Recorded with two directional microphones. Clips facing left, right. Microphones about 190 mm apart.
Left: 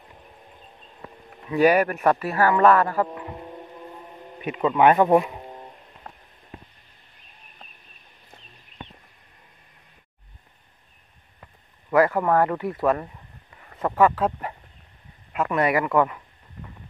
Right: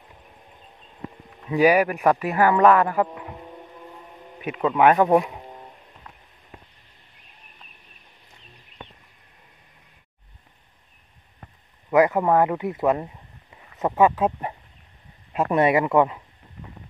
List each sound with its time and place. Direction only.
1.5 s speech: 10° right (ahead or behind)
4.4 s speech: 5° right (ahead or behind)
5.3 s a sound: 10° left (ahead or behind)
11.9 s speech: 20° right (ahead or behind)
15.3 s speech: 30° right (ahead or behind)